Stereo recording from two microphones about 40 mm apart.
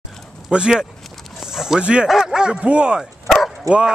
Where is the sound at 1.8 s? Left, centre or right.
Right.